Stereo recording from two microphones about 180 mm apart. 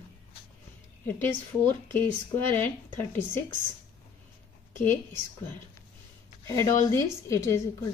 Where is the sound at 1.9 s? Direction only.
10° left (ahead or behind).